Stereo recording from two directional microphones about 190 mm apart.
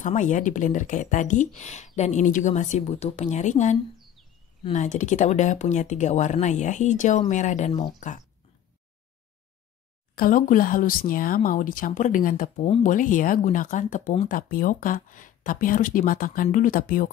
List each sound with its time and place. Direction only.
0.0 s speech: 40° left (ahead or behind)
4.7 s speech: 40° left (ahead or behind)
10.1 s speech: 45° left (ahead or behind)